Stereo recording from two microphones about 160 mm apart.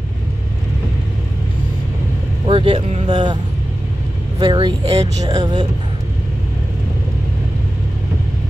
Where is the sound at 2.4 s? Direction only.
30° right (ahead or behind).